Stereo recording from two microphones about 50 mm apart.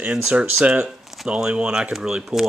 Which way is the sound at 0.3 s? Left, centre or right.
Right.